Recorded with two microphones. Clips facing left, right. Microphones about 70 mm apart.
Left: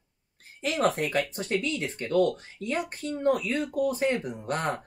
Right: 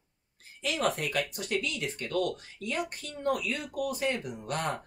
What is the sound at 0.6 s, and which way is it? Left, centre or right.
Speech, left.